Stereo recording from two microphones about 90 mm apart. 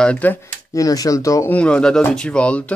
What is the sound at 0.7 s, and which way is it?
Speech, 40° left (ahead or behind).